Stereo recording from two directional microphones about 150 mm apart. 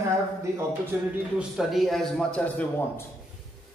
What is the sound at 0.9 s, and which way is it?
Speech, 15° right (ahead or behind).